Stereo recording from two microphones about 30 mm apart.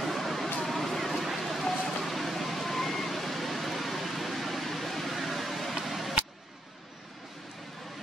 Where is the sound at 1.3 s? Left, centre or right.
Centre.